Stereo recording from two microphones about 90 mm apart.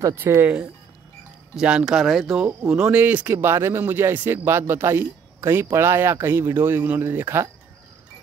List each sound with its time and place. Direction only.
0.2 s speech: 25° right (ahead or behind)
1.5 s speech: 10° right (ahead or behind)
2.7 s speech: 15° right (ahead or behind)